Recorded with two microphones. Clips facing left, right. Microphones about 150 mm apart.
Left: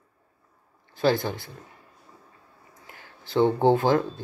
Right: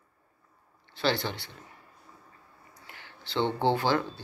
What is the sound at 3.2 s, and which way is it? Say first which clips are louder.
Speech: left 7 dB; 40° left (ahead or behind).